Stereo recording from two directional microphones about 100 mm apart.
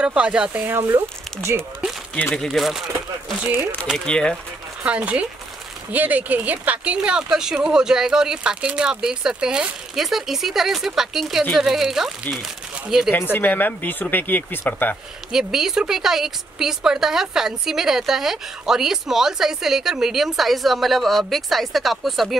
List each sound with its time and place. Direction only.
0.0 s speech: 10° right (ahead or behind)
0.7 s speech: 25° right (ahead or behind)
2.3 s a woman's voice: centre (ahead or behind)
4.0 s speech: 10° left (ahead or behind)
4.8 s a woman's voice: 15° right (ahead or behind)
13.1 s speech: 20° left (ahead or behind)
15.3 s a woman's voice: 5° right (ahead or behind)